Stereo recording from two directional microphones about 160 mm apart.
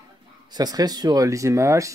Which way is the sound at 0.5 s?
25° right (ahead or behind).